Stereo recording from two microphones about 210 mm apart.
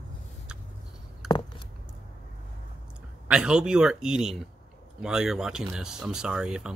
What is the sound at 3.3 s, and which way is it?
Speech, 5° right (ahead or behind).